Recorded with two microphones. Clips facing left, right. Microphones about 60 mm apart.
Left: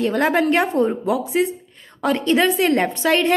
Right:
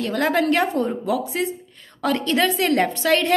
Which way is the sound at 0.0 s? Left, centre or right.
Left.